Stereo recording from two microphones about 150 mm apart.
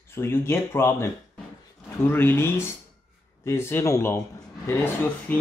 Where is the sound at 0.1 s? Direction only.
15° left (ahead or behind).